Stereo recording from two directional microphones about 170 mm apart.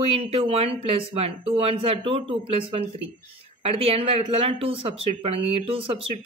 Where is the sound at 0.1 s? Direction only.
35° right (ahead or behind).